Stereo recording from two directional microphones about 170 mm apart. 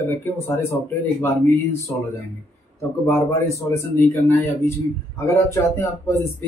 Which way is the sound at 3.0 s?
15° left (ahead or behind).